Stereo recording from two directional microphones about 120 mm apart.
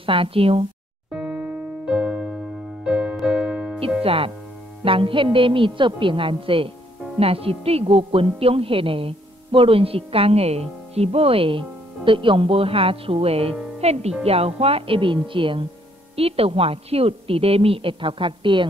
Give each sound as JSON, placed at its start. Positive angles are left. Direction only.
{"t": 0.0, "sound": "a woman's voice", "side_deg": -50}
{"t": 1.1, "sound": "electric piano", "side_deg": -10}
{"t": 2.8, "sound": "music", "side_deg": -10}
{"t": 3.2, "sound": "keyboard", "side_deg": -10}
{"t": 4.0, "sound": "a woman's voice", "side_deg": -50}